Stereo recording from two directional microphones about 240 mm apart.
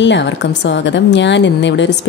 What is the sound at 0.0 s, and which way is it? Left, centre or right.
A woman's voice, left.